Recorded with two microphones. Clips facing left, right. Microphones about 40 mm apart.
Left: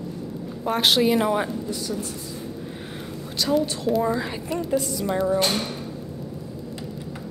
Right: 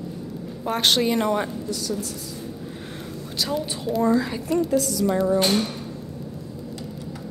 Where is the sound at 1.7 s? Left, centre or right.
Centre.